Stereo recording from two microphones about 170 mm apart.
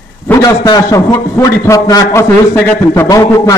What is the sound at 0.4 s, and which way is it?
A man's voice, 25° left (ahead or behind).